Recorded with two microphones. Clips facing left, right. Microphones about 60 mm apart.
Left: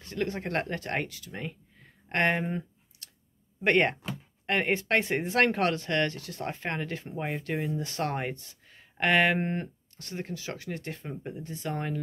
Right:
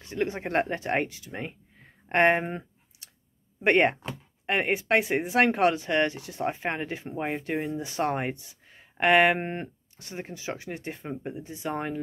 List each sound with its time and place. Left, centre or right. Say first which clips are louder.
0.0 s speech: right 2 dB; centre
2.9 s a sound: left 1 dB; centre
3.6 s speech: right 2 dB; centre